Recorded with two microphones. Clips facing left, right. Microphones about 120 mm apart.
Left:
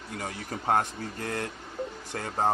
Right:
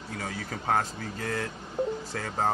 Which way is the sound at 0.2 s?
20° left (ahead or behind).